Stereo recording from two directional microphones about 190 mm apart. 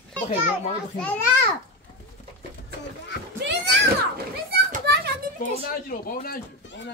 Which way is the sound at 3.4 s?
65° right (ahead or behind).